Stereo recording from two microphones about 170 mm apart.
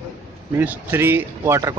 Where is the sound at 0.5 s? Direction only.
15° right (ahead or behind).